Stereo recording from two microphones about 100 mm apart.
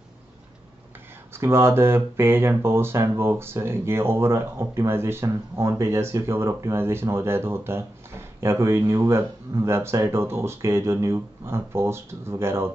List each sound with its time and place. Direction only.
1.3 s speech: 25° right (ahead or behind)